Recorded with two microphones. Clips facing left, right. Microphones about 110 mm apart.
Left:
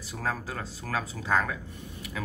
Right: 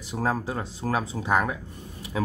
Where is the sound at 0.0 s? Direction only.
20° right (ahead or behind).